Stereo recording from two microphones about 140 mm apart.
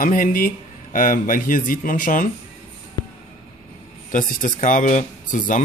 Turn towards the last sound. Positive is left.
turn(degrees=65)  # may be behind; listen again after turning